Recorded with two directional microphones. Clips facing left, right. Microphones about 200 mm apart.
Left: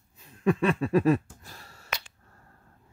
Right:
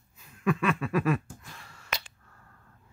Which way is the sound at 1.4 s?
35° left (ahead or behind).